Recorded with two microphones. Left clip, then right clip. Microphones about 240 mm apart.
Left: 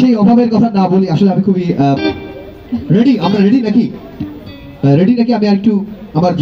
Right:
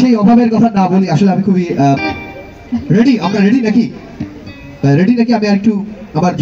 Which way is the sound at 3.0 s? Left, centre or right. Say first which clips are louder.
Even; left.